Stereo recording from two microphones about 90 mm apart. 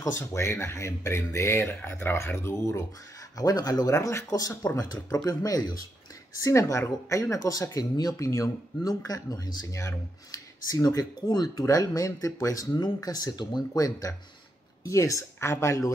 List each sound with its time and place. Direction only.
0.0 s speech: 35° left (ahead or behind)
3.3 s speech: 45° left (ahead or behind)